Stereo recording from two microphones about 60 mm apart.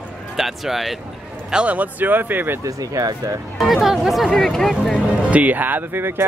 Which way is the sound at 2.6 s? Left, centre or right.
Right.